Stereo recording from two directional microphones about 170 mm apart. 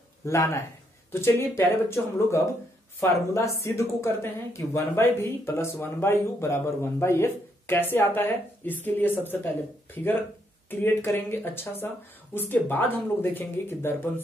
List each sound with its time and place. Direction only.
0.2 s speech: 15° left (ahead or behind)
10.7 s speech: 10° left (ahead or behind)